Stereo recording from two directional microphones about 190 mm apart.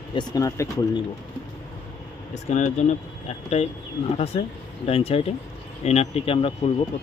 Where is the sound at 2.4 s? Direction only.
40° left (ahead or behind).